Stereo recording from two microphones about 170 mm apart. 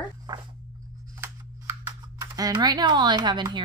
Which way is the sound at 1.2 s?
15° right (ahead or behind).